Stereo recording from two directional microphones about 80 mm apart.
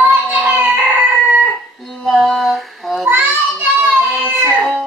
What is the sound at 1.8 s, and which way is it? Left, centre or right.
Female singing, centre.